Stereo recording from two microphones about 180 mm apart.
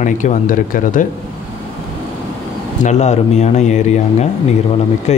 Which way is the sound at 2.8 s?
40° left (ahead or behind).